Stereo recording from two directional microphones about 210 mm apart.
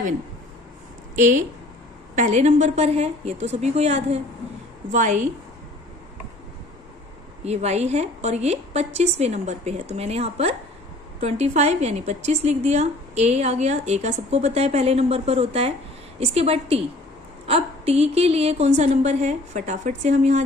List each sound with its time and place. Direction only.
1.1 s a woman's voice: 35° right (ahead or behind)
7.4 s a woman's voice: 30° right (ahead or behind)